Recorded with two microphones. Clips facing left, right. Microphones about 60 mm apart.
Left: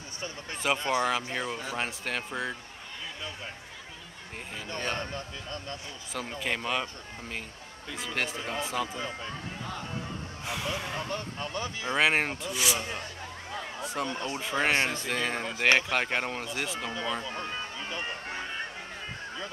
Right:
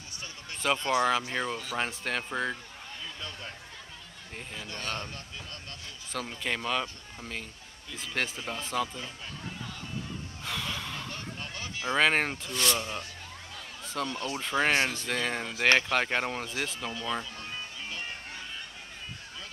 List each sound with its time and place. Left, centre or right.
0.7 s a man's voice: left
1.3 s speech: centre
4.6 s a man's voice: left
6.4 s speech: centre
10.4 s a sound: centre
11.9 s speech: centre
13.5 s a sound: left
13.8 s speech: left
14.4 s speech: centre
17.3 s music: left